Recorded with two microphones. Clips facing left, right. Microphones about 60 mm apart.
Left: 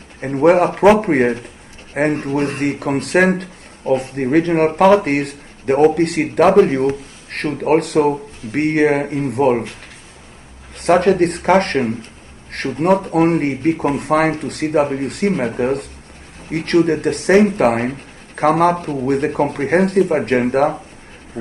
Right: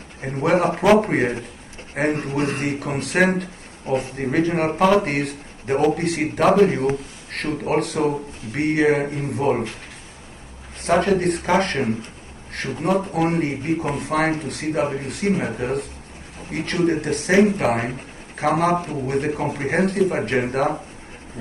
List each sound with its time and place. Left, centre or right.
0.4 s speech: left
7.3 s speech: left
10.8 s speech: left